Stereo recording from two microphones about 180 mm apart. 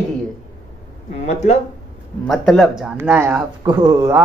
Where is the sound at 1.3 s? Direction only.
40° left (ahead or behind).